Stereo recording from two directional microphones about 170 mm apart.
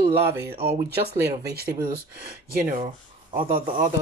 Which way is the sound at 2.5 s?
45° right (ahead or behind).